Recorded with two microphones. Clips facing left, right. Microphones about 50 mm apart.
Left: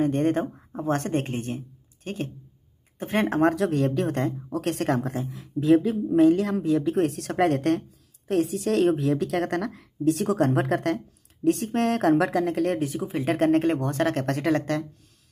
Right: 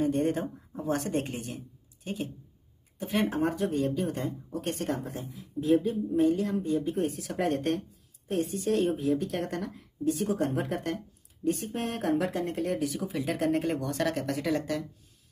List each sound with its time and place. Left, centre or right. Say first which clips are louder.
0.0 s speech: left 4 dB; left
3.3 s speech: left 7 dB; left
11.4 s speech: left 8 dB; left
12.7 s speech: left 3 dB; left
13.2 s speech: left 7 dB; left
13.7 s speech: left 5 dB; left
14.1 s speech: left 5 dB; left